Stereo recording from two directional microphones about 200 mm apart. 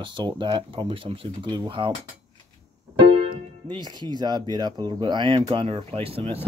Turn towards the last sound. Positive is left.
turn(degrees=-30)  # may be behind; listen again after turning